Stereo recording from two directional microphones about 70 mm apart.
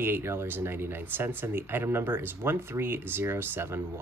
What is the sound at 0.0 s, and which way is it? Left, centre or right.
Speech, right.